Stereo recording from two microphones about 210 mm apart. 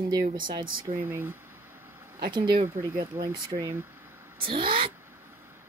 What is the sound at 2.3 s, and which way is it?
Speech, 25° right (ahead or behind).